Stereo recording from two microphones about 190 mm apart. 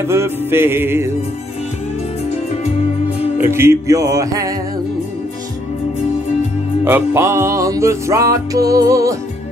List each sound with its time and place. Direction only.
0.0 s music: 15° right (ahead or behind)
3.3 s music: 15° right (ahead or behind)
6.8 s music: 15° right (ahead or behind)